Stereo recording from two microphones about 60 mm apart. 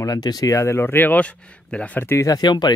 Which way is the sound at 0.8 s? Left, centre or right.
Left.